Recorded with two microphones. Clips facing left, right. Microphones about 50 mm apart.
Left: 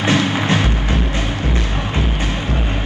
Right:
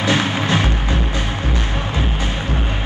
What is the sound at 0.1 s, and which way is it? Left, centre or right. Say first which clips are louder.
Music: left 2 dB; right.